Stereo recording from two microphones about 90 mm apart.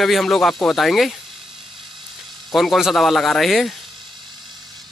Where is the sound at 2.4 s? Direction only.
Centre (ahead or behind).